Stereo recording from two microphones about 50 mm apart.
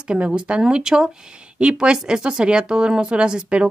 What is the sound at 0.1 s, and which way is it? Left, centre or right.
Speech, right.